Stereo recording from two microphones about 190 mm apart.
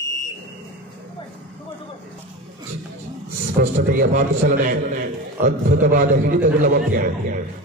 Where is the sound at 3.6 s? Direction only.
50° right (ahead or behind).